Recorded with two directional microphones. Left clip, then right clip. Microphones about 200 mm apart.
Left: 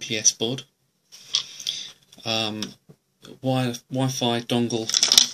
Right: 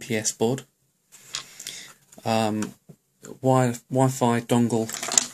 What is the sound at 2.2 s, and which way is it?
Speech, 50° right (ahead or behind).